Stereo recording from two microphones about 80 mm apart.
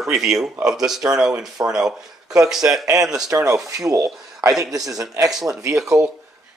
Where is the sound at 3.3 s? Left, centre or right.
Right.